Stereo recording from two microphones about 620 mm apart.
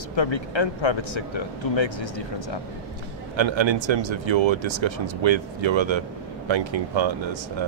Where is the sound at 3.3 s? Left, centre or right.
Right.